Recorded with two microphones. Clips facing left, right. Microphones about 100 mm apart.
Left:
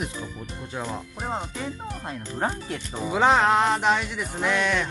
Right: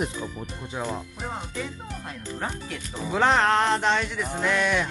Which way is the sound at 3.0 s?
5° left (ahead or behind).